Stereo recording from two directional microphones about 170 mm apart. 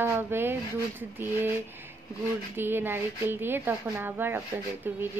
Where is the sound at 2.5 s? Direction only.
10° right (ahead or behind).